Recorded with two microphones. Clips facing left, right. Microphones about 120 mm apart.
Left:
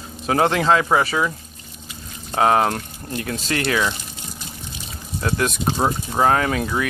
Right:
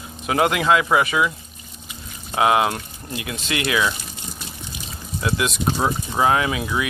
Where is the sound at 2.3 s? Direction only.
40° left (ahead or behind).